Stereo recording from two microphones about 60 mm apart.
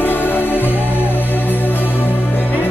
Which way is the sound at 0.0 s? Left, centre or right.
Left.